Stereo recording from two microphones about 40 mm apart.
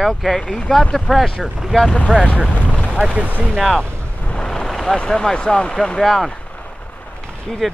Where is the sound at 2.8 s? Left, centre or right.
Centre.